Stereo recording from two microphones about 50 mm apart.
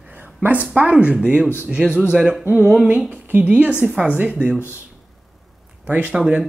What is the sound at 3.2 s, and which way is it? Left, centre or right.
Speech, right.